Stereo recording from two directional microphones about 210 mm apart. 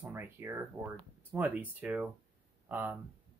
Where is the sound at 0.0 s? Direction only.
10° right (ahead or behind).